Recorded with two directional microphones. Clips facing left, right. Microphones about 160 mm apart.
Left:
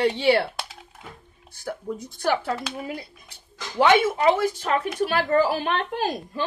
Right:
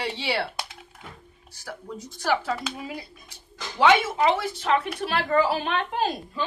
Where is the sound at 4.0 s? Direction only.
50° left (ahead or behind).